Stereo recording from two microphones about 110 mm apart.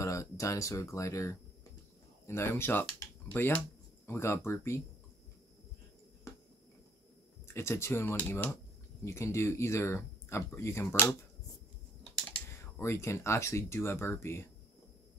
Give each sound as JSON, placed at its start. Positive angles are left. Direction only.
{"t": 0.0, "sound": "speech", "side_deg": 30}
{"t": 6.3, "sound": "a sound", "side_deg": 25}
{"t": 7.4, "sound": "speech", "side_deg": 25}
{"t": 9.0, "sound": "speech", "side_deg": 25}
{"t": 12.0, "sound": "typing", "side_deg": 10}
{"t": 12.8, "sound": "speech", "side_deg": 25}